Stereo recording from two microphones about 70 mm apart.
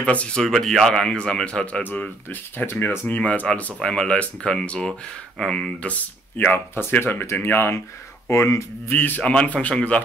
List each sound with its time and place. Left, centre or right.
0.0 s speech: centre
0.4 s speech: centre
1.8 s speech: left
3.2 s speech: centre
5.9 s speech: left
8.3 s speech: left
8.9 s speech: left
9.2 s speech: centre